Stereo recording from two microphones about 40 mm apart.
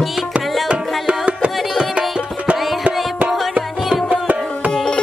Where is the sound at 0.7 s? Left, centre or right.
Right.